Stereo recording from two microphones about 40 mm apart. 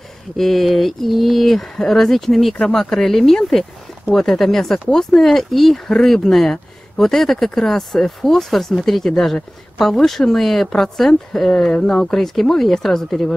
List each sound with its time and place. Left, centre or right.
0.4 s a sound: centre
1.8 s speech: centre
4.9 s a sound: centre
5.9 s speech: centre
11.7 s speech: left
12.1 s speech: centre